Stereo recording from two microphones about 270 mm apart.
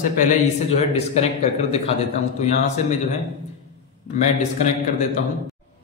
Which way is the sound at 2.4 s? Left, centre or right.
Left.